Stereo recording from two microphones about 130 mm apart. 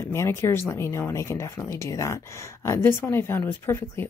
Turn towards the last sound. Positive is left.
turn(degrees=20)  # may be behind; listen again after turning